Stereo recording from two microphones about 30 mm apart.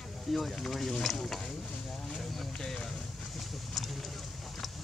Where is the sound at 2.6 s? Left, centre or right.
Centre.